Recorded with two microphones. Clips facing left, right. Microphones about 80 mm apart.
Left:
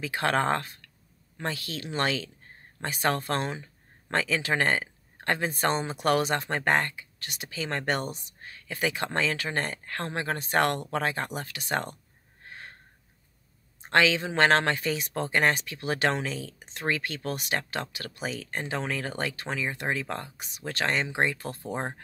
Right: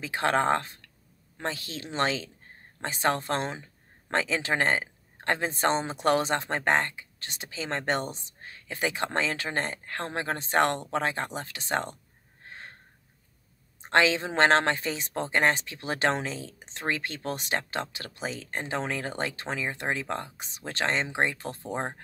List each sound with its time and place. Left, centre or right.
0.0 s speech: right
12.4 s gasp: right
13.7 s speech: right
21.6 s speech: centre